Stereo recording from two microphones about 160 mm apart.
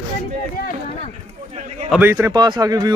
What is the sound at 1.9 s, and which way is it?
Speech, 15° right (ahead or behind).